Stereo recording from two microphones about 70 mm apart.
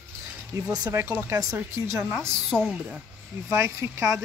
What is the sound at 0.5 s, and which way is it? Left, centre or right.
Speech, right.